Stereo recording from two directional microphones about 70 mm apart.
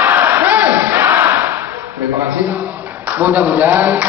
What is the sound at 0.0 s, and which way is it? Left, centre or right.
Battle cry, right.